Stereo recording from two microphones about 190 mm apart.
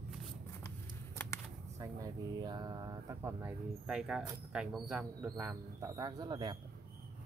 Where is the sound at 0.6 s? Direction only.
15° left (ahead or behind).